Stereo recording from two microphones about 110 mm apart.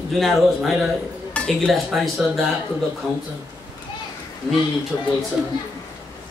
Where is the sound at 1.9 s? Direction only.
5° right (ahead or behind).